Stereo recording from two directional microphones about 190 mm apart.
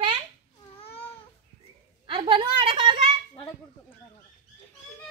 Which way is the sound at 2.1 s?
25° right (ahead or behind).